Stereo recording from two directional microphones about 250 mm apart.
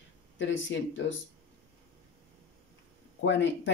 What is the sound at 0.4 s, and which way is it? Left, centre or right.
Speech, left.